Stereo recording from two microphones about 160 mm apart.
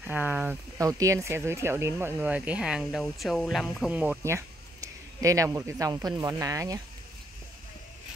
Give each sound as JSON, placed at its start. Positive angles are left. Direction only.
{"t": 0.0, "sound": "speech", "side_deg": -10}
{"t": 0.7, "sound": "speech", "side_deg": -20}